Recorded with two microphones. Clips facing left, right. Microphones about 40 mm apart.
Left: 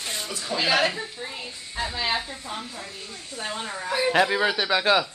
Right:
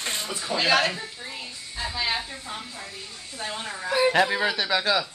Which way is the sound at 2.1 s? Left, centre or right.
Centre.